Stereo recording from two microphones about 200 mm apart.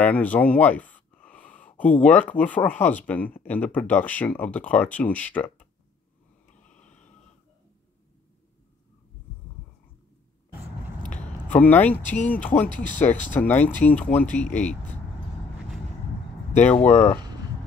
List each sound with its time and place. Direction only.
0.0 s a sound: 5° left (ahead or behind)
1.8 s speech: 10° left (ahead or behind)
6.6 s a sound: 5° left (ahead or behind)
11.5 s speech: 10° left (ahead or behind)
12.6 s speech: 40° left (ahead or behind)
12.9 s speech: 10° left (ahead or behind)
16.7 s speech: 35° left (ahead or behind)